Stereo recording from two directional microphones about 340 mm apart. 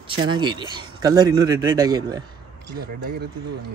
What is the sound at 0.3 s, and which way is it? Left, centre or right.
Speech, centre.